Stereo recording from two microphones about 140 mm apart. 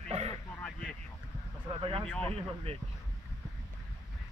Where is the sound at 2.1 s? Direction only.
10° left (ahead or behind).